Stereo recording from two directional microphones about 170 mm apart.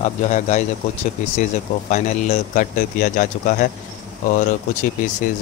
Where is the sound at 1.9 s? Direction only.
45° left (ahead or behind).